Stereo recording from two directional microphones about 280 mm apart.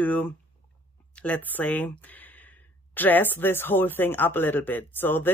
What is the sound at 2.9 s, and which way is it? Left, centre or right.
Speech, centre.